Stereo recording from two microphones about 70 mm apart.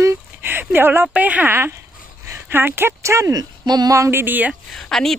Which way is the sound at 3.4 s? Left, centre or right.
Right.